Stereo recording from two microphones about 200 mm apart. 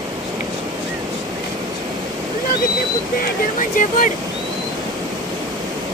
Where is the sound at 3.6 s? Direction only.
40° left (ahead or behind).